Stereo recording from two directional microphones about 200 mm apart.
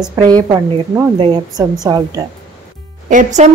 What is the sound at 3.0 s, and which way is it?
Speech, 40° right (ahead or behind).